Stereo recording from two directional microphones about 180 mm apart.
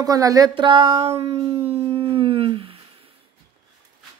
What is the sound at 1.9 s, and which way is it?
Howl, 30° right (ahead or behind).